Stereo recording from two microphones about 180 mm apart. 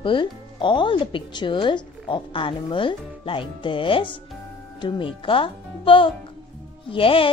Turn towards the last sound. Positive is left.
turn(degrees=30)  # may be behind; listen again after turning